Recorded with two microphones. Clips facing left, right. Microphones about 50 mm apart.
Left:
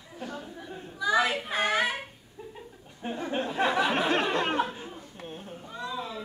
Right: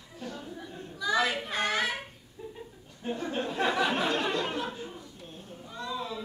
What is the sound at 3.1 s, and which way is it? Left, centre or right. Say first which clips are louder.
Speech: left 3 dB; centre.